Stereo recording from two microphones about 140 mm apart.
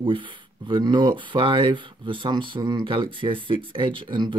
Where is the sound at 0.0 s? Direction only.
35° right (ahead or behind).